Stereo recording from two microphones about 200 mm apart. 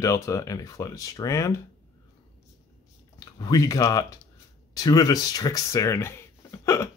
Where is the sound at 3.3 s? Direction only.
20° left (ahead or behind).